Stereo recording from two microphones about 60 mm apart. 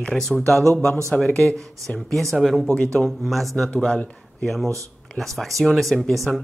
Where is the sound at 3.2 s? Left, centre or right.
Centre.